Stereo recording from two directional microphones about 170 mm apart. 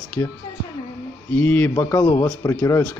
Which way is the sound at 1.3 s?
10° left (ahead or behind).